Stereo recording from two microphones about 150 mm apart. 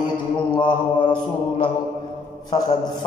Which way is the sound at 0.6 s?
30° left (ahead or behind).